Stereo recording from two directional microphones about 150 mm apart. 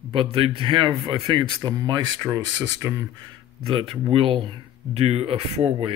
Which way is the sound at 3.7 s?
35° right (ahead or behind).